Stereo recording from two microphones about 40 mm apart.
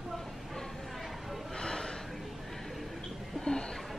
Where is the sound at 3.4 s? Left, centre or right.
Centre.